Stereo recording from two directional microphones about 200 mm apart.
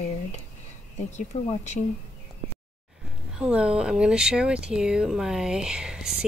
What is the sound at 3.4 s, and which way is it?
Speech, 5° right (ahead or behind).